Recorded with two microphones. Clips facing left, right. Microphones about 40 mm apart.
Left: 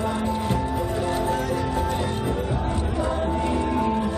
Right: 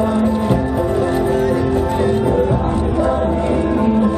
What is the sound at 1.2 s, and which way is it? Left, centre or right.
Music, right.